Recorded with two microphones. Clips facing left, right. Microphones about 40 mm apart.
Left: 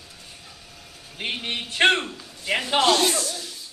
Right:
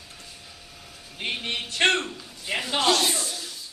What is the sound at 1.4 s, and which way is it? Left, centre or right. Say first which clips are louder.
Speech: left 3 dB; left.